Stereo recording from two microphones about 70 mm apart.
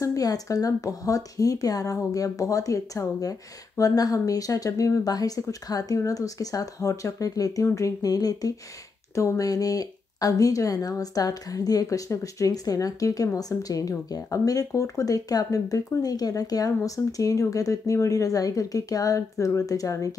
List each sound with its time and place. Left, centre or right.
0.0 s speech: left